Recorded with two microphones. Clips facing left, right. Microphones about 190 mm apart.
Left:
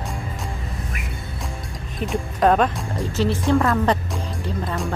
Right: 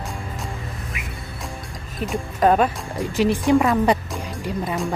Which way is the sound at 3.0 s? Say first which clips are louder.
Right 2 dB; 15° right (ahead or behind).